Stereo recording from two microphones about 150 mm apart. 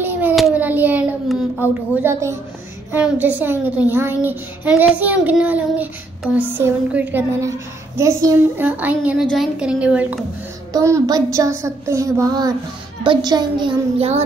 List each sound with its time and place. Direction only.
0.0 s child singing: 10° right (ahead or behind)
1.7 s a sound: 15° right (ahead or behind)
9.3 s a woman's voice: 5° right (ahead or behind)
10.7 s a sound: 20° right (ahead or behind)
13.0 s a child's voice: 30° right (ahead or behind)
13.9 s child singing: 45° right (ahead or behind)